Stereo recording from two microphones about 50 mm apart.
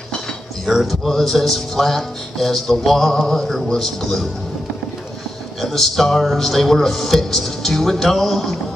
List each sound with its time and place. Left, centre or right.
0.7 s speech: centre
5.6 s speech: centre